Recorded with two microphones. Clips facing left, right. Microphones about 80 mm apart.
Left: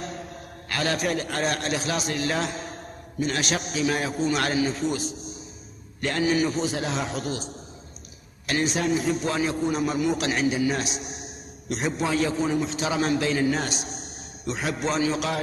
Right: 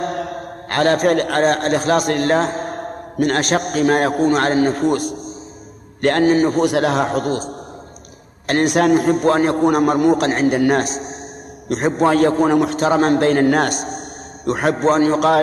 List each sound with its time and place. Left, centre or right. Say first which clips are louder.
0.0 s mantra: right 12 dB; right
1.4 s a man's voice: right 10 dB; right
6.6 s a man's voice: right 11 dB; right
8.5 s a man's voice: right 10 dB; right
10.9 s a man's voice: right 8 dB; right